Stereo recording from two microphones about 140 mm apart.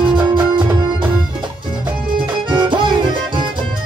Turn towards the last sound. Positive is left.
turn(degrees=-35)  # may be behind; listen again after turning